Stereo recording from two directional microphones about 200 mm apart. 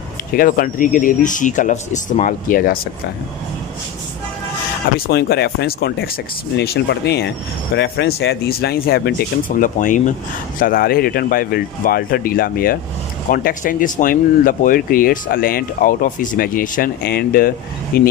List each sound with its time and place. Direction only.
0.3 s speech: 45° left (ahead or behind)
4.9 s speech: 50° left (ahead or behind)